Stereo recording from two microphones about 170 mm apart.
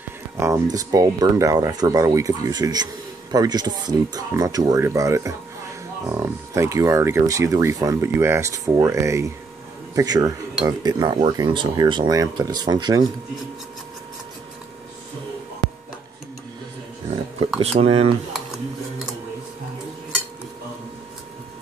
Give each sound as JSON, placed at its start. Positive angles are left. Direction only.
{"t": 0.4, "sound": "speech", "side_deg": -20}
{"t": 17.6, "sound": "speech", "side_deg": -35}